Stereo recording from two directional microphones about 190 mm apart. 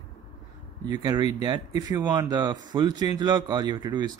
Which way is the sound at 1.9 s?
20° right (ahead or behind).